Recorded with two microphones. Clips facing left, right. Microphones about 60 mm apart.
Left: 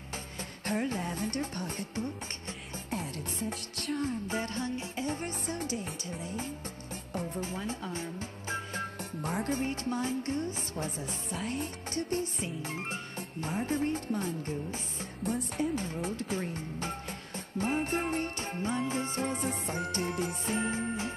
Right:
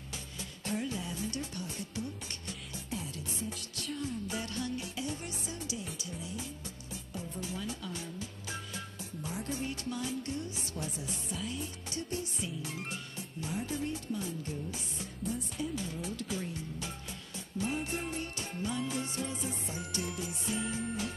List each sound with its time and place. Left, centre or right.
0.4 s speech: left
3.0 s music: left
4.0 s music: left
9.2 s music: left
15.2 s speech: left
17.6 s music: left